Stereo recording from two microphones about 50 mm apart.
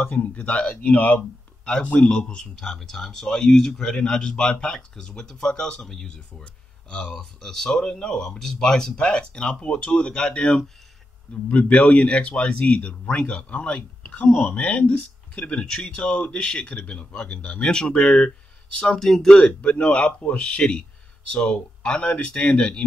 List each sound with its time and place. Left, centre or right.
0.0 s speech: left
1.7 s speech: left
6.4 s speech: centre
8.9 s speech: left
15.6 s speech: centre
18.8 s speech: centre
19.4 s speech: left